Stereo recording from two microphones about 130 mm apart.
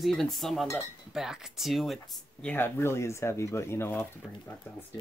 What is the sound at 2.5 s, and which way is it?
Speech, 20° left (ahead or behind).